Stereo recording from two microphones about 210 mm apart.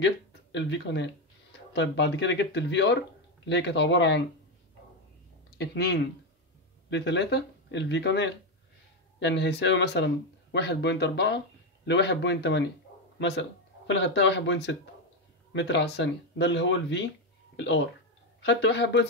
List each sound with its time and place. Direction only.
0.0 s speech: 60° left (ahead or behind)
5.6 s speech: 50° left (ahead or behind)
18.4 s speech: 60° left (ahead or behind)